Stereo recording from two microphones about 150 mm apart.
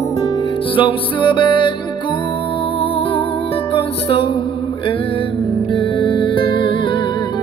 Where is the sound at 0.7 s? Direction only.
35° left (ahead or behind).